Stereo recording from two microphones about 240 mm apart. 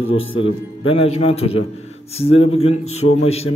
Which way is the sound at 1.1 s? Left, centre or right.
Left.